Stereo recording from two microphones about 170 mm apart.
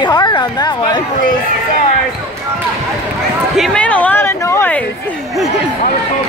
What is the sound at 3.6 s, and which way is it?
Speech, 5° left (ahead or behind).